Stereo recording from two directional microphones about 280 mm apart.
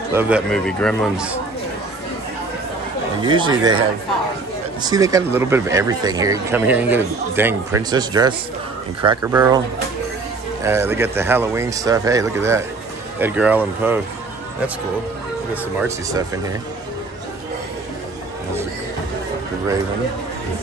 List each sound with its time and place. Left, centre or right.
0.1 s a man's voice: centre
3.2 s speech: centre
4.8 s speech: centre
10.6 s speech: centre
15.5 s speech: centre